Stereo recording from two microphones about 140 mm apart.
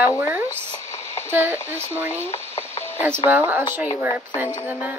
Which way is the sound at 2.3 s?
50° left (ahead or behind).